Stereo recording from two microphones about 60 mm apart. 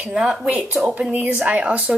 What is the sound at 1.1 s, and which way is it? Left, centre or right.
Speech, right.